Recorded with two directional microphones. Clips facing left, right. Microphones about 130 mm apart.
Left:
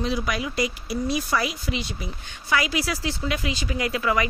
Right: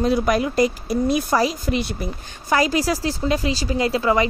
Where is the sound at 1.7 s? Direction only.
50° right (ahead or behind).